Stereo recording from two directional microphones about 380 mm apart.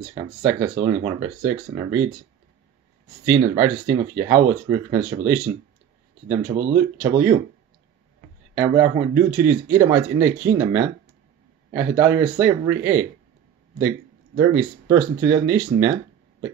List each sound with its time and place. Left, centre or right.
0.1 s speech: centre
3.3 s speech: centre
6.4 s speech: right
6.7 s speech: centre
8.5 s speech: centre